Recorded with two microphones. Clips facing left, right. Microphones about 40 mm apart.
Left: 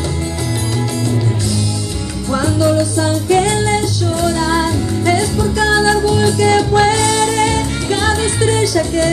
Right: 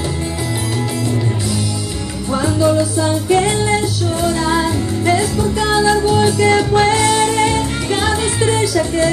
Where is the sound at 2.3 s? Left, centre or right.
Centre.